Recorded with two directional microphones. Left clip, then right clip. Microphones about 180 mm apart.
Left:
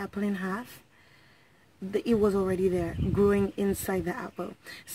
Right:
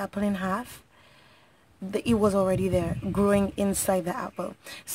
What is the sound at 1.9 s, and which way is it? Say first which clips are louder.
Speech: right 2 dB; 35° right (ahead or behind).